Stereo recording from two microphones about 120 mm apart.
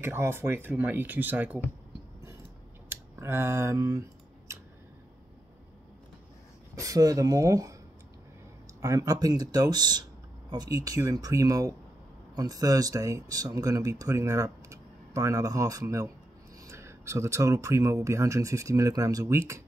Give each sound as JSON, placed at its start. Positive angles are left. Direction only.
{"t": 0.0, "sound": "speech", "side_deg": -20}
{"t": 2.9, "sound": "speech", "side_deg": -20}
{"t": 4.5, "sound": "scissors", "side_deg": -25}
{"t": 6.7, "sound": "speech", "side_deg": -30}
{"t": 8.8, "sound": "speech", "side_deg": -30}